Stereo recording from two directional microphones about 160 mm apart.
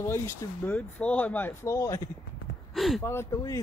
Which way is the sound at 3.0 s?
15° left (ahead or behind).